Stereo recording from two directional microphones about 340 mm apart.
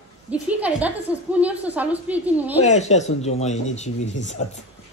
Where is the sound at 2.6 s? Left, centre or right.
Centre.